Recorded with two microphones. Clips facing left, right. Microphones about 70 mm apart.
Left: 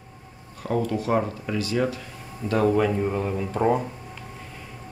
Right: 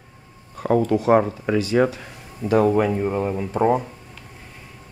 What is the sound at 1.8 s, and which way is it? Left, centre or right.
Speech, right.